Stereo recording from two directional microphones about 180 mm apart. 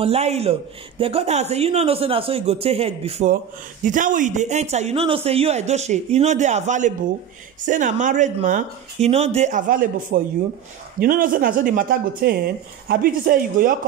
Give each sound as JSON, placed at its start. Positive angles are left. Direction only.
{"t": 0.0, "sound": "a man's voice", "side_deg": -35}
{"t": 3.8, "sound": "a man's voice", "side_deg": -45}